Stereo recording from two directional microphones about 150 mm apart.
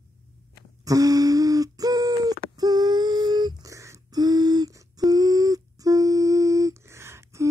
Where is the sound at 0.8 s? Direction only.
25° right (ahead or behind).